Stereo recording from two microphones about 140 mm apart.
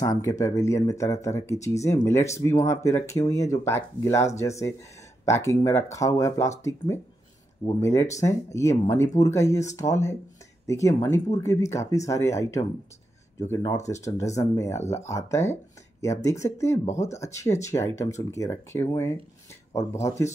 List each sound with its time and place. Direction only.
0.0 s speech: 25° left (ahead or behind)